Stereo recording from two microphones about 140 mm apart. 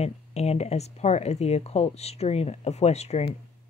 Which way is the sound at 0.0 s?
50° left (ahead or behind).